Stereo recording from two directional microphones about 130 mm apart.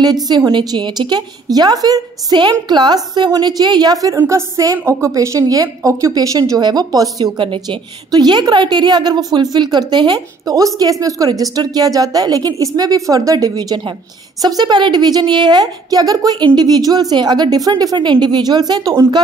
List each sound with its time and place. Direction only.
0.0 s a woman's voice: 30° right (ahead or behind)